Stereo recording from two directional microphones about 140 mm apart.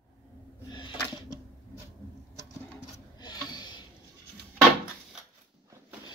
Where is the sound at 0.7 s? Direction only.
35° left (ahead or behind).